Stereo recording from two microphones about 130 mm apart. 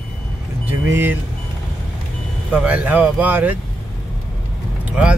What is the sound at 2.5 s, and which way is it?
Speech, 10° right (ahead or behind).